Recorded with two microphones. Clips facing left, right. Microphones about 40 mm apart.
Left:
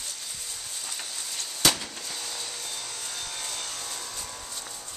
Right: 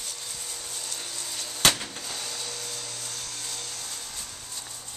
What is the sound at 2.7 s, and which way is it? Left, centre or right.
Vacuum cleaner, left.